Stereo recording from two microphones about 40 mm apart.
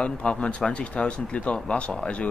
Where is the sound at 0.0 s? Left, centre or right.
Left.